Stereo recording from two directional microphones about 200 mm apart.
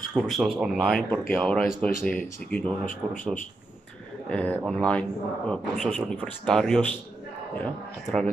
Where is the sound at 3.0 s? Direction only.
5° right (ahead or behind).